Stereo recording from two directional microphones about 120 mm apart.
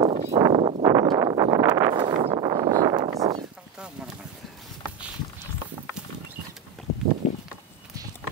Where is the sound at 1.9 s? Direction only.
45° right (ahead or behind).